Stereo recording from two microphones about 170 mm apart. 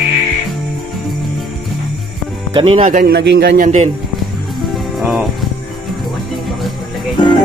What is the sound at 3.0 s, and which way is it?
Speech, 70° right (ahead or behind).